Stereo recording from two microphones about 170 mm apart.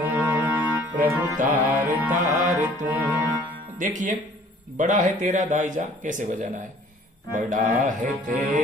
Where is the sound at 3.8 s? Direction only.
45° right (ahead or behind).